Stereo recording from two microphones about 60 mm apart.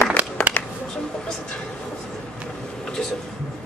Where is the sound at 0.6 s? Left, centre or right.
Left.